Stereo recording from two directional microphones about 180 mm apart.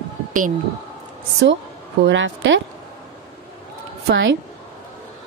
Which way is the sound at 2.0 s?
90° right.